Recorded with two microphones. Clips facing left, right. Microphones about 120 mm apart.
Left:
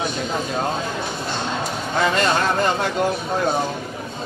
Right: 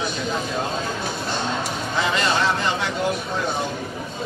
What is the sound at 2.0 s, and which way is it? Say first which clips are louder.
Speech: left 3 dB; 50° left (ahead or behind).